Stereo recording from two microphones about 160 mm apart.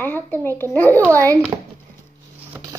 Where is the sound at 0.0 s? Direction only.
10° left (ahead or behind).